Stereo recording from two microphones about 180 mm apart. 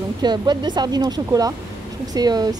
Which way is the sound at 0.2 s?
25° right (ahead or behind).